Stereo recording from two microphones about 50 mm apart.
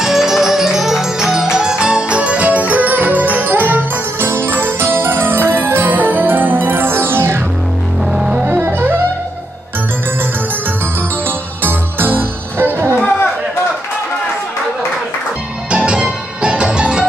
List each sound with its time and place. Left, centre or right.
0.0 s music: centre; by 7.4 s right
8.0 s music: centre
8.5 s music: right
11.2 s music: right
15.7 s music: centre